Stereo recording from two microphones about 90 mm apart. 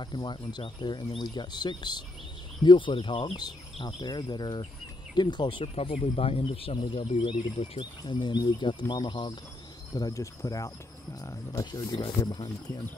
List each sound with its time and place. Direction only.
0.0 s speech: 60° left (ahead or behind)
4.0 s cricket: 50° left (ahead or behind)
5.1 s speech: 55° left (ahead or behind); by 7.9 s 80° left
8.1 s speech: 60° left (ahead or behind)
9.9 s cricket: 40° left (ahead or behind)
11.6 s cricket: 50° left (ahead or behind)